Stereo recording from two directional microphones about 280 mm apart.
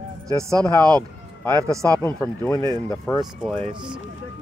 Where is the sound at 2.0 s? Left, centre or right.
Centre.